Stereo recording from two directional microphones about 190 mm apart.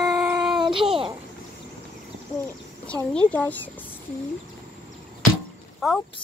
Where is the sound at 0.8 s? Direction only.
30° right (ahead or behind).